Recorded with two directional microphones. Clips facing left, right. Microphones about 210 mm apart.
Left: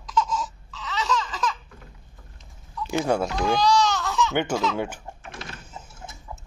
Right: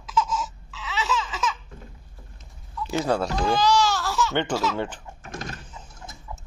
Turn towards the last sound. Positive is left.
turn(degrees=-45)  # may be behind; listen again after turning